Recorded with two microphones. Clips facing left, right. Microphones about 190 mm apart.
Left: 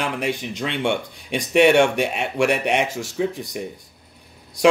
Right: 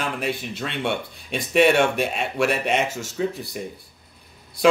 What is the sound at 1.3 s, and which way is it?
Speech, 70° left (ahead or behind).